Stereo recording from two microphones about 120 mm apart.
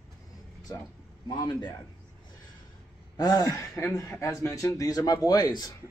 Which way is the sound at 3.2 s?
30° left (ahead or behind).